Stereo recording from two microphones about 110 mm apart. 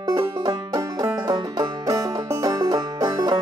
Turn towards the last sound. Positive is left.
turn(degrees=-35)  # may be behind; listen again after turning